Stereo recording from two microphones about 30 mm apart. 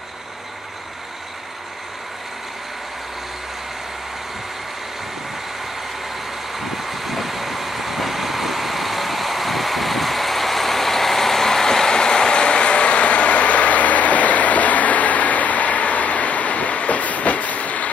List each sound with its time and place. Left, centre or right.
6.7 s vehicle: centre; by 17.8 s left